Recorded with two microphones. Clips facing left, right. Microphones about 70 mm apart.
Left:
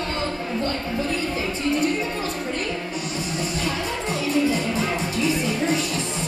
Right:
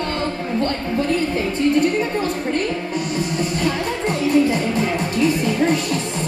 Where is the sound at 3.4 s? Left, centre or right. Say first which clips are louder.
Right 3 dB; right.